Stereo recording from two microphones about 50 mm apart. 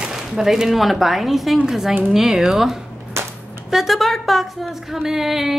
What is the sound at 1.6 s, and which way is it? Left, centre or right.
A woman's voice, centre.